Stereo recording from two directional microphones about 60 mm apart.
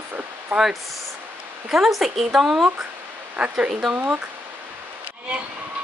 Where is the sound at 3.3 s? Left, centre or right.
Right.